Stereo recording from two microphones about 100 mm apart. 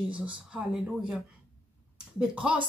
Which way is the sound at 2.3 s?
10° right (ahead or behind).